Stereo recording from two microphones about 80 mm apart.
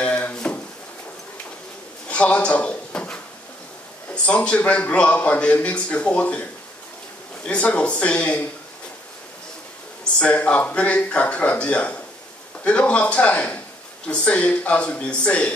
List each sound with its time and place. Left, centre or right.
0.0 s drawer open or close: centre
2.0 s a man's voice: centre
7.4 s a man's voice: centre
10.1 s a man's voice: centre